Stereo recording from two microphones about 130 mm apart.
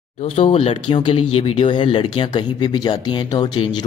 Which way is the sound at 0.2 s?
45° left (ahead or behind).